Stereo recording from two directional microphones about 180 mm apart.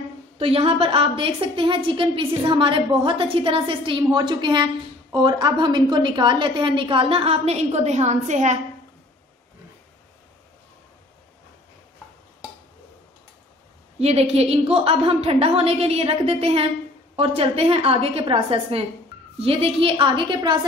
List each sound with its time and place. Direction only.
0.4 s a woman's voice: 30° right (ahead or behind)
13.9 s a woman's voice: 35° right (ahead or behind)